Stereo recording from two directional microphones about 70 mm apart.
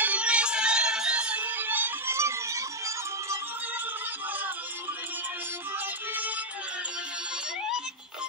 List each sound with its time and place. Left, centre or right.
0.0 s music: centre
2.1 s music: right
6.1 s music: right